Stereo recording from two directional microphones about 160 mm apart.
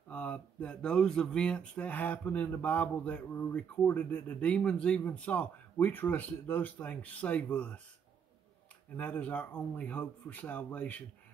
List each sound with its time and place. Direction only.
0.1 s speech: 10° left (ahead or behind)
8.9 s speech: 10° left (ahead or behind)